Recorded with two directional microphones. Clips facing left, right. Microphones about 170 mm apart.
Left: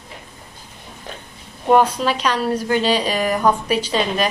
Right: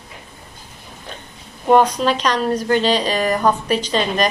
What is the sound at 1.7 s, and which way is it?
A woman's voice, 5° left (ahead or behind).